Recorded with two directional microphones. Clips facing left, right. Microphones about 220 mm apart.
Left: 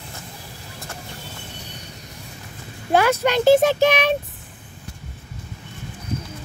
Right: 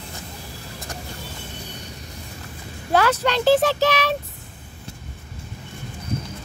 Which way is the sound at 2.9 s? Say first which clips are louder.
Left 2 dB; 15° left (ahead or behind).